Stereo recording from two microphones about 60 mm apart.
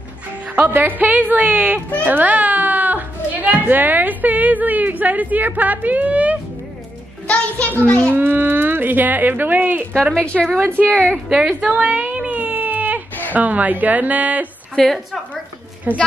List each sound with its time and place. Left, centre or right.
0.7 s a woman's voice: right
7.2 s a child's voice: left
8.1 s speech: right
10.3 s a woman's voice: centre
10.6 s speech: right
10.9 s a woman's voice: left
11.2 s baby cry: centre; by 13.0 s right
13.3 s speech: right
14.8 s a woman's voice: centre
15.9 s speech: right